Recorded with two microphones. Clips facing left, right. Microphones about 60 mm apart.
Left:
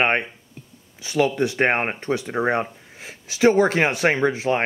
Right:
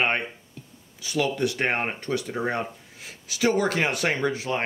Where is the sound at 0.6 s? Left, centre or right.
Left.